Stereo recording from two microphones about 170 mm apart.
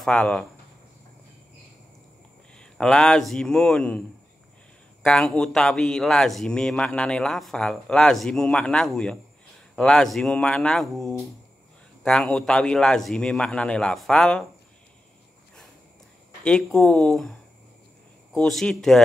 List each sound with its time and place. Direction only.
0.0 s speech: 5° left (ahead or behind)
2.5 s speech: 5° left (ahead or behind)
5.0 s speech: 5° left (ahead or behind)
16.4 s speech: 5° left (ahead or behind)